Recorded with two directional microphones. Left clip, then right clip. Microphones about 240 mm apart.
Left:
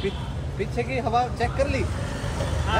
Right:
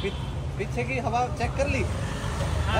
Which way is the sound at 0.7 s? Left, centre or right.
Left.